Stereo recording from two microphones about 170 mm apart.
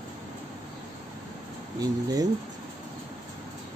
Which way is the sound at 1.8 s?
20° right (ahead or behind).